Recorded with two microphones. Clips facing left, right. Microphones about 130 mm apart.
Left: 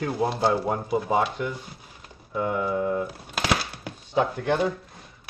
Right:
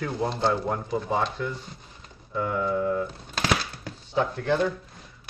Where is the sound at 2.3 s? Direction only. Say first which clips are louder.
Left 1 dB; 20° left (ahead or behind).